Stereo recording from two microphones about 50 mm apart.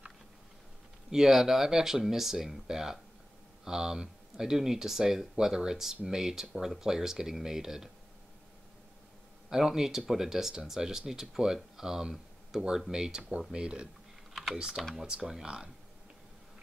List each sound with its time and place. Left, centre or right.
1.1 s speech: centre
9.5 s speech: centre